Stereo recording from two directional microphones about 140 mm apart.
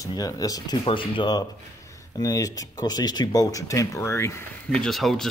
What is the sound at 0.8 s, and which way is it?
Speech, 35° left (ahead or behind).